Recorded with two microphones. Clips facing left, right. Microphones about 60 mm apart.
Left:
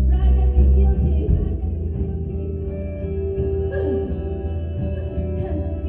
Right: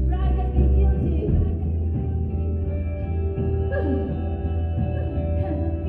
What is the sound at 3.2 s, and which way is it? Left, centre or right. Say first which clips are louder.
Music: left 4 dB; right.